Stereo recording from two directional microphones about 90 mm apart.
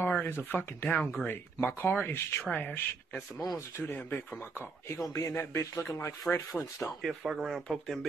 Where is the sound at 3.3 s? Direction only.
40° left (ahead or behind).